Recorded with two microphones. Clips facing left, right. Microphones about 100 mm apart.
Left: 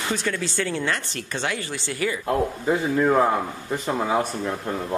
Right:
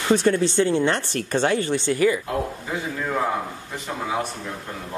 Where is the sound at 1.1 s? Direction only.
45° right (ahead or behind).